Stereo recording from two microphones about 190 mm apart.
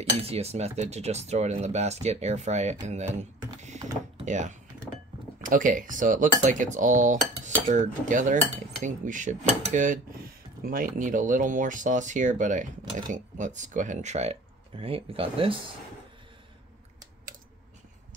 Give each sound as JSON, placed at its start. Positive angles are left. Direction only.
{"t": 0.2, "sound": "speech", "side_deg": -30}
{"t": 4.3, "sound": "speech", "side_deg": -40}